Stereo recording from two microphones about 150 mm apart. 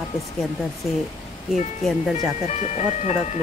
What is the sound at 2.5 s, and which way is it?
Speech, 45° left (ahead or behind).